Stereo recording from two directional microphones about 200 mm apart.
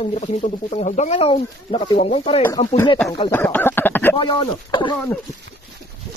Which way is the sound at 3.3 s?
10° left (ahead or behind).